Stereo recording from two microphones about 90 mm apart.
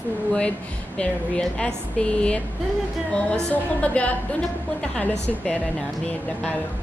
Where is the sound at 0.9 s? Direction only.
10° left (ahead or behind).